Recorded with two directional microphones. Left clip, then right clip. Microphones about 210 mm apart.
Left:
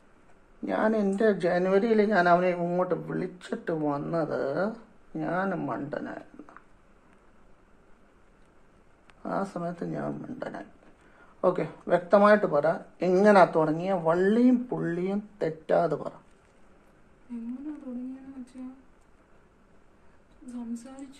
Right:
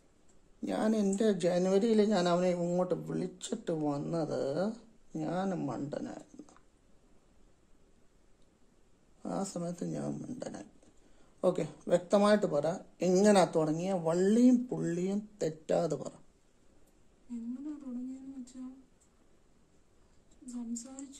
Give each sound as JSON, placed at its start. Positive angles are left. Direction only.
{"t": 0.7, "sound": "speech", "side_deg": -50}
{"t": 9.2, "sound": "speech", "side_deg": -50}